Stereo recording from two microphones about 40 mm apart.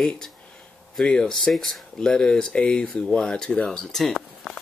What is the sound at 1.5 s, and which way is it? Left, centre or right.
Speech, centre.